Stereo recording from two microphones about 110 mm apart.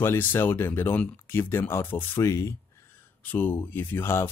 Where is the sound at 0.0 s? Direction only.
20° left (ahead or behind).